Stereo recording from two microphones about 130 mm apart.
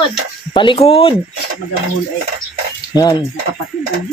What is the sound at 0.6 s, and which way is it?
Speech, 40° left (ahead or behind).